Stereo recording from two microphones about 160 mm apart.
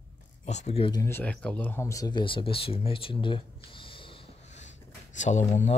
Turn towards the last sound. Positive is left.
turn(degrees=45)  # may be behind; listen again after turning